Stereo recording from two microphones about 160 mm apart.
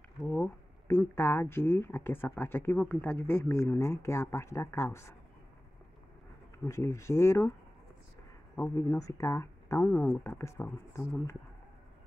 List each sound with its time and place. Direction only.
0.2 s speech: 15° left (ahead or behind)
6.6 s speech: 20° left (ahead or behind)
8.5 s speech: 15° left (ahead or behind)